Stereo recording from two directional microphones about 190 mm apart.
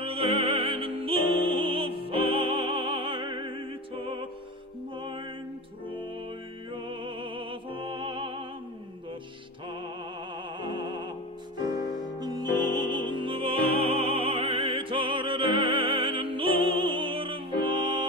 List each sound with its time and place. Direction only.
0.0 s opera: 30° right (ahead or behind)
4.0 s music: 25° right (ahead or behind)
6.7 s music: 25° right (ahead or behind)
10.6 s music: 25° right (ahead or behind)
12.2 s music: 20° right (ahead or behind)